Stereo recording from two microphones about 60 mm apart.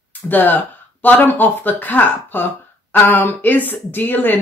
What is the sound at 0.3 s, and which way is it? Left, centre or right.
Speech, left.